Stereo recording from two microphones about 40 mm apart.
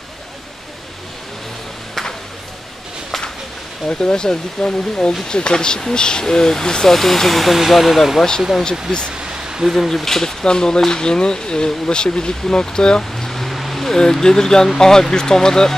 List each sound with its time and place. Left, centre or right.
3.8 s speech: centre
9.7 s speech: centre
13.1 s vehicle: centre
13.9 s speech: centre